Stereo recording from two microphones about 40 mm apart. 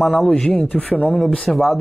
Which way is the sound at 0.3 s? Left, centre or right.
Left.